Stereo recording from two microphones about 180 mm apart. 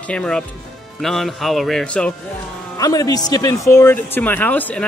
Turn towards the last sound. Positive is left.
turn(degrees=10)  # may be behind; listen again after turning